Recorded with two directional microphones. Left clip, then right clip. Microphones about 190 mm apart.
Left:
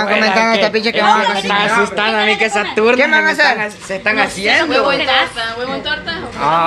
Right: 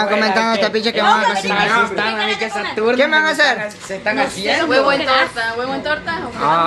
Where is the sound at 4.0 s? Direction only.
35° left (ahead or behind).